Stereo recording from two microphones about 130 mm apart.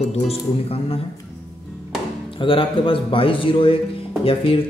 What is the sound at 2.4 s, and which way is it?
Speech, 40° left (ahead or behind).